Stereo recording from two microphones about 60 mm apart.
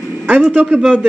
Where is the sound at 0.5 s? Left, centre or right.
Right.